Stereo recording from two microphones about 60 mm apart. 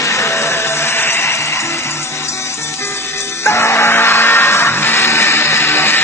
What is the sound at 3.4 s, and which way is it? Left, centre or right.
Music, left.